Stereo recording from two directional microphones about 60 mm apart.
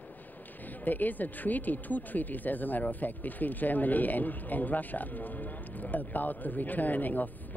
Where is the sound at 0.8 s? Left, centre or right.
Left.